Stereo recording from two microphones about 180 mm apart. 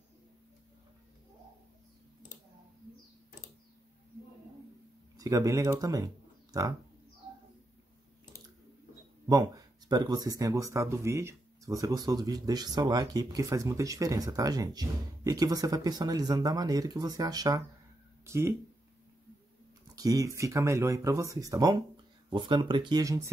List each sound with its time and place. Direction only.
5.1 s speech: 20° right (ahead or behind)
9.3 s speech: 20° right (ahead or behind)
20.0 s speech: 20° right (ahead or behind)